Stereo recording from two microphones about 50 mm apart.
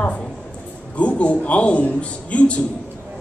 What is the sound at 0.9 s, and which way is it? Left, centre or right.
A man's voice, left.